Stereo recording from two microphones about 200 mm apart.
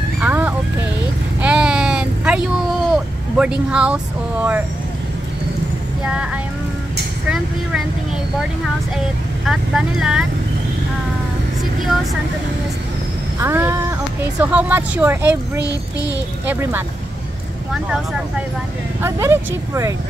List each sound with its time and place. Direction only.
0.2 s vehicle: 5° right (ahead or behind)
1.4 s a sound: 5° right (ahead or behind)
6.0 s speech: 5° right (ahead or behind)
9.5 s speech: 5° right (ahead or behind)
11.8 s speech: centre (ahead or behind)
13.4 s speech: 10° right (ahead or behind)
15.6 s child singing: 15° left (ahead or behind)
16.4 s speech: 10° right (ahead or behind)
17.8 s speech: centre (ahead or behind)
18.9 s speech: 15° right (ahead or behind)